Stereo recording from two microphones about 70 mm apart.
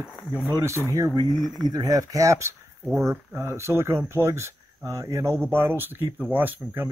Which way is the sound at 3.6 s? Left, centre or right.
Right.